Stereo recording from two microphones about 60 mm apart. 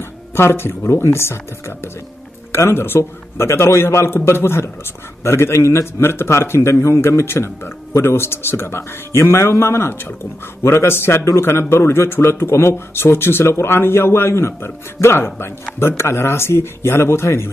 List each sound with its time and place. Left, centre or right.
0.4 s a man's voice: left
2.5 s a man's voice: left